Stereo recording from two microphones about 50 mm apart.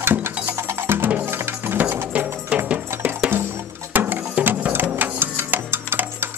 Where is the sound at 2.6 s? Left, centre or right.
Right.